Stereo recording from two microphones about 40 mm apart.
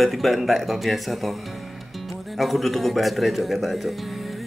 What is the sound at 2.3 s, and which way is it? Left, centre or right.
Speech, centre.